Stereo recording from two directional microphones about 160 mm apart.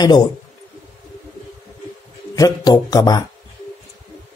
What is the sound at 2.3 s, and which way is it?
Speech, 25° left (ahead or behind).